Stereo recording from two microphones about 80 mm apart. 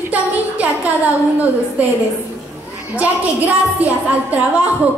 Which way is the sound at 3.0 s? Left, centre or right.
Centre.